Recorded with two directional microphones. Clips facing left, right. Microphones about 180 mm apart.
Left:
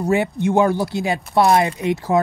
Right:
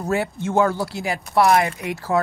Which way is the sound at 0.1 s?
20° left (ahead or behind).